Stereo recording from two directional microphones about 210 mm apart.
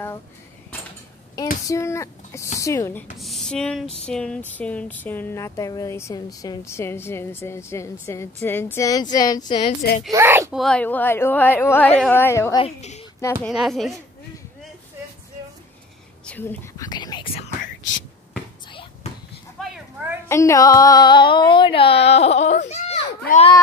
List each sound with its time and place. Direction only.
1.7 s speech: 15° left (ahead or behind)
9.8 s a woman's voice: 35° left (ahead or behind)
10.1 s speech: 10° right (ahead or behind)
10.6 s speech: 5° left (ahead or behind)
12.6 s a woman's voice: 30° left (ahead or behind)
13.2 s speech: 15° left (ahead or behind)
13.5 s speech: centre (ahead or behind)
16.3 s speech: 10° left (ahead or behind)
19.6 s a sound: centre (ahead or behind)
20.2 s a sound: 15° left (ahead or behind); by 23.5 s 35° left (ahead or behind)